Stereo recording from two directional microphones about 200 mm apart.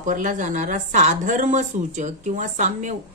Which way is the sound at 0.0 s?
40° right (ahead or behind).